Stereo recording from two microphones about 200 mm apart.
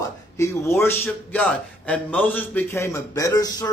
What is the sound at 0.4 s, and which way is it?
Speech, 15° left (ahead or behind).